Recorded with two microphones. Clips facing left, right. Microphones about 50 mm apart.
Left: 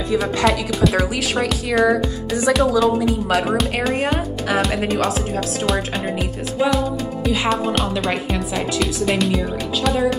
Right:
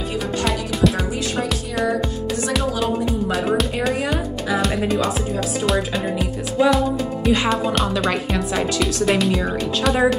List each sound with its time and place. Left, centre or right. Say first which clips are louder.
0.9 s speech: left 4 dB; left
1.5 s speech: left 5 dB; centre